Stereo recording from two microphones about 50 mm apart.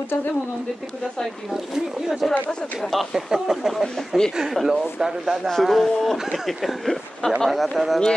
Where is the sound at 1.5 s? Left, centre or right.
Centre.